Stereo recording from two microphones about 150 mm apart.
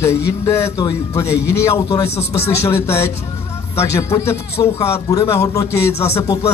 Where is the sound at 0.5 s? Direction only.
15° left (ahead or behind).